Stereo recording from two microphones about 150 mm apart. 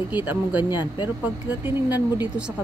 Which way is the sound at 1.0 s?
10° right (ahead or behind).